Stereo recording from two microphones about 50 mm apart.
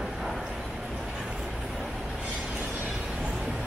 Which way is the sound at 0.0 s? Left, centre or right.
Centre.